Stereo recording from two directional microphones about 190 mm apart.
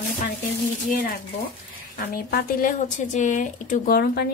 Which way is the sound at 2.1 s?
50° left (ahead or behind).